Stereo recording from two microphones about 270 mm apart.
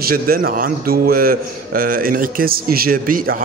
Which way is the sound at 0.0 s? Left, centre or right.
Right.